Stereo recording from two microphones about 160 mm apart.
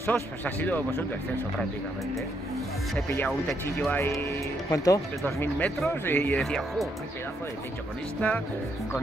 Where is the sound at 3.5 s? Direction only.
15° left (ahead or behind).